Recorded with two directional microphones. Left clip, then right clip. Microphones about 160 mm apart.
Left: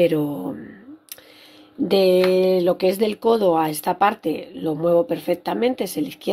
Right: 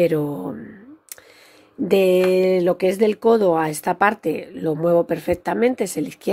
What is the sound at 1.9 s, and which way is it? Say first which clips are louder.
Speech: even; 30° right (ahead or behind).